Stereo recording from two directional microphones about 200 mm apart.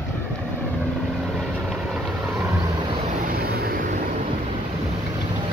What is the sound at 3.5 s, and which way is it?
Vehicle, 50° right (ahead or behind).